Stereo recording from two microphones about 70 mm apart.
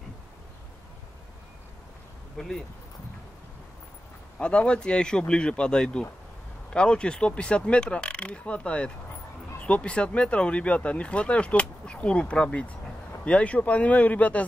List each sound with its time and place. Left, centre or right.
2.3 s speech: centre
4.4 s speech: centre